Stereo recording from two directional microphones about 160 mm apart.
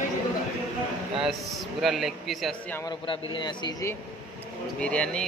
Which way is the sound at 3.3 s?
30° left (ahead or behind).